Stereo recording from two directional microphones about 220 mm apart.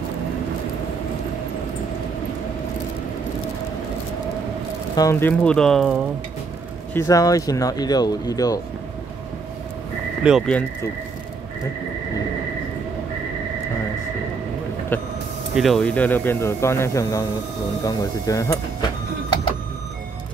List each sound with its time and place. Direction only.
4.9 s speech: 15° left (ahead or behind)
6.9 s speech: 15° left (ahead or behind)
10.2 s speech: centre (ahead or behind)
14.9 s vehicle: 10° left (ahead or behind)
15.5 s speech: centre (ahead or behind)